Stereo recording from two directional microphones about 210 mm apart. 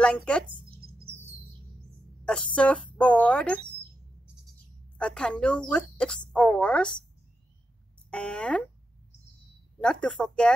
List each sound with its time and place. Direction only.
0.0 s speech: 5° left (ahead or behind)
0.7 s music: 45° right (ahead or behind)
1.0 s music: 10° right (ahead or behind)
2.2 s speech: 5° left (ahead or behind)
4.9 s speech: 5° left (ahead or behind)
8.1 s speech: 5° left (ahead or behind)
10.0 s speech: 5° left (ahead or behind)